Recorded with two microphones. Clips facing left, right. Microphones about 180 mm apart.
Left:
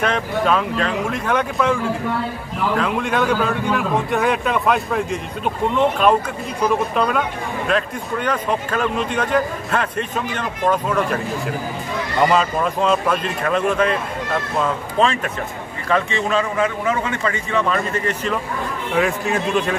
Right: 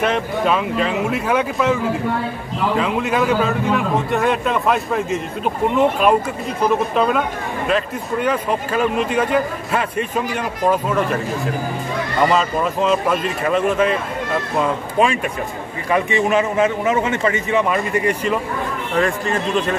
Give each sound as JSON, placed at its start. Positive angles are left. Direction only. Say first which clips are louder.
{"t": 0.0, "sound": "a man's voice", "louder": "right 1 dB", "side_deg": -5}
{"t": 12.3, "sound": "a man's voice", "louder": "even", "side_deg": 0}
{"t": 18.9, "sound": "a man's voice", "louder": "even", "side_deg": 0}